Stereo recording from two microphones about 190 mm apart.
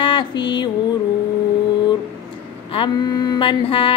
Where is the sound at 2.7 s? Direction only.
25° left (ahead or behind).